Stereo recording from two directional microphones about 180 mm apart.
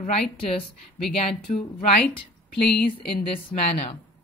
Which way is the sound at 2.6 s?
65° left (ahead or behind).